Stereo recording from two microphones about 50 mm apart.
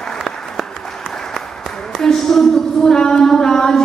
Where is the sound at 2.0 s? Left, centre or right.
Centre.